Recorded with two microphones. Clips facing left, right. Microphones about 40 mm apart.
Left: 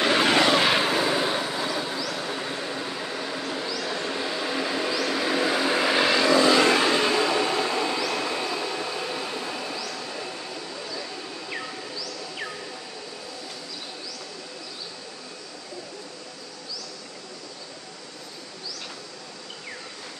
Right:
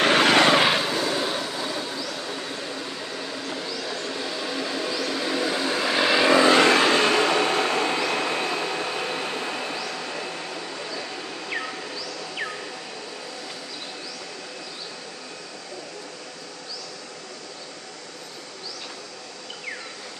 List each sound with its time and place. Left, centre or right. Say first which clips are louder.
0.0 s vehicle: right 3 dB; right
0.8 s vehicle: left 2 dB; centre
6.3 s vehicle: right 2 dB; right
6.6 s vehicle: right 2 dB; right
11.5 s a sound: right 4 dB; right